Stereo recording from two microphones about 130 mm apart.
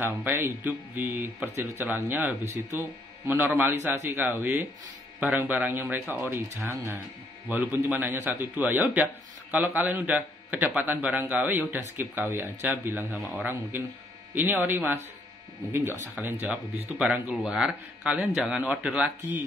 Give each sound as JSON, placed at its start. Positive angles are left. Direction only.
{"t": 0.0, "sound": "a man's voice", "side_deg": -15}